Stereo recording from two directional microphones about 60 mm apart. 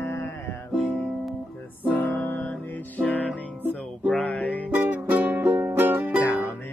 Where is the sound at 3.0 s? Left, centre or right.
Left.